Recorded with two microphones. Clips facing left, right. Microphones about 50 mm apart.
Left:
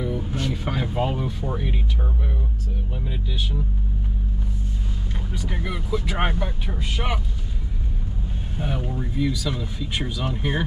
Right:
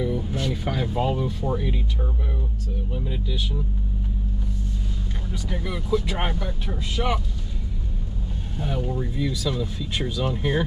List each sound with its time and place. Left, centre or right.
0.0 s a sound: centre
1.4 s speech: centre
5.3 s speech: centre
8.5 s speech: centre